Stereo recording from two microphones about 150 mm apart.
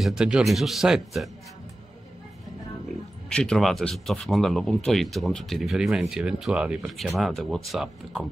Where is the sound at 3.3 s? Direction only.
5° left (ahead or behind).